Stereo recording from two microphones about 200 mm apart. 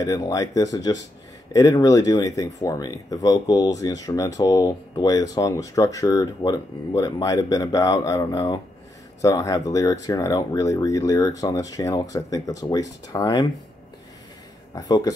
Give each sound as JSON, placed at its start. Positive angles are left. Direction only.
{"t": 0.0, "sound": "speech", "side_deg": 15}
{"t": 14.7, "sound": "speech", "side_deg": 20}